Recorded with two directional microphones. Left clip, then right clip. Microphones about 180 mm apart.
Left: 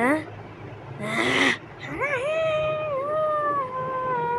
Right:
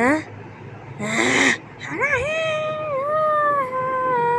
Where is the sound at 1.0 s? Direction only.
15° right (ahead or behind).